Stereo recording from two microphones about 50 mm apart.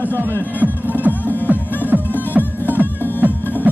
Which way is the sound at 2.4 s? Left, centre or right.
Left.